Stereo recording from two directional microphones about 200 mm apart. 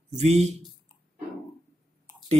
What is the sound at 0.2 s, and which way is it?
Speech, 30° right (ahead or behind).